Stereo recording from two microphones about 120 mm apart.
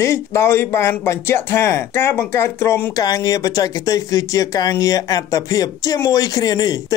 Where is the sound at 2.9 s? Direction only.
30° left (ahead or behind).